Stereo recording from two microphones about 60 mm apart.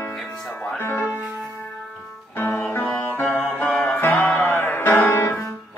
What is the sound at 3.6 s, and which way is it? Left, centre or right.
Music, centre.